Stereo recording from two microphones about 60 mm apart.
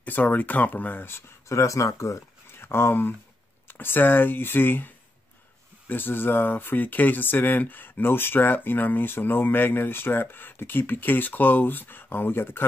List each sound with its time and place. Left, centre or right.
0.0 s speech: left
2.6 s speech: left